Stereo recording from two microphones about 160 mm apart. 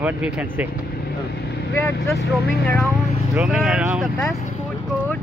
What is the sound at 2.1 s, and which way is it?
Speech, 80° left.